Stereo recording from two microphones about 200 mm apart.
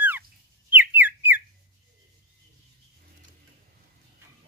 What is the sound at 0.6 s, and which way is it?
Whistle, 10° right (ahead or behind).